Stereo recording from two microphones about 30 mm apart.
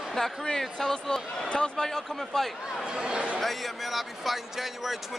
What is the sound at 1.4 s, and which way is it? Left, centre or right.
Speech, left.